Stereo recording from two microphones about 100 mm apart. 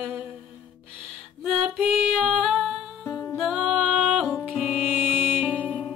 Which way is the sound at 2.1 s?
5° right (ahead or behind).